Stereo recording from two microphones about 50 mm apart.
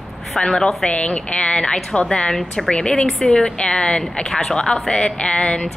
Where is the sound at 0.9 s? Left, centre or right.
Centre.